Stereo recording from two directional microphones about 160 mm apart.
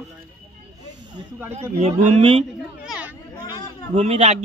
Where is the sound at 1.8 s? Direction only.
40° right (ahead or behind).